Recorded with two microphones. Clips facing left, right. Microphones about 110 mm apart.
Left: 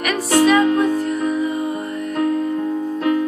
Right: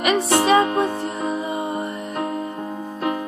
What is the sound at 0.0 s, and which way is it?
Music, 30° right (ahead or behind).